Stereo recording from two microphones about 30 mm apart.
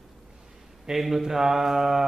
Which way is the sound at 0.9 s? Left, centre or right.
Centre.